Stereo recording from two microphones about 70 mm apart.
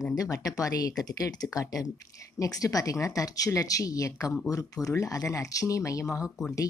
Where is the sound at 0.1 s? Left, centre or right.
Left.